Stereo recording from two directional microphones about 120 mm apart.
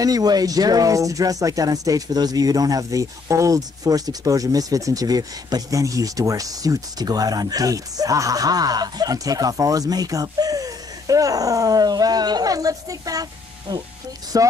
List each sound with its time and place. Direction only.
0.0 s speech: 30° right (ahead or behind)